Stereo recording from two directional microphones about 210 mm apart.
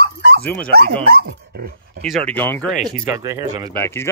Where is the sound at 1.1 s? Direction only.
50° right (ahead or behind).